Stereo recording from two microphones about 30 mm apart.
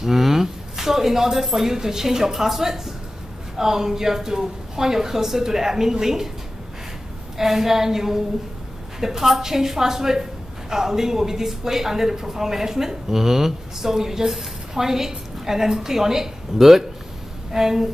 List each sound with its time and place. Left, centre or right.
0.0 s speech: centre
7.3 s speech: centre